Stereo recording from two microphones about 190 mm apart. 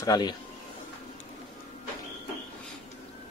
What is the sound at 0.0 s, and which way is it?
Speech, 20° left (ahead or behind).